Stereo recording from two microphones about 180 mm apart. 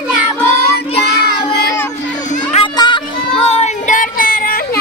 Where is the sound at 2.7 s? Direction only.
25° left (ahead or behind).